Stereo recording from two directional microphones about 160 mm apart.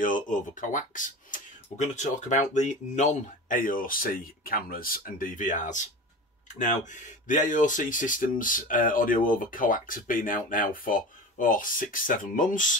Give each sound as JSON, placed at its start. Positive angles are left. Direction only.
{"t": 0.0, "sound": "speech", "side_deg": 55}